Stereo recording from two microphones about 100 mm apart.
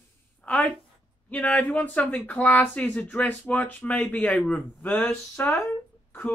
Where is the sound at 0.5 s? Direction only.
15° left (ahead or behind).